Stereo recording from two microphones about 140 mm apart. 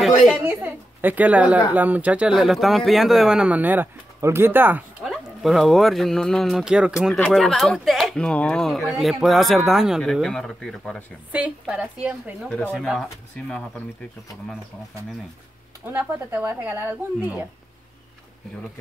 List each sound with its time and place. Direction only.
0.4 s a woman's voice: 10° right (ahead or behind)
5.0 s speech: centre (ahead or behind)
11.3 s speech: 10° right (ahead or behind)
15.9 s speech: 15° right (ahead or behind)